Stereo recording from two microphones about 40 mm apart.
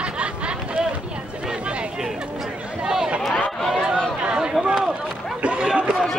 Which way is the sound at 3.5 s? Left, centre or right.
Centre.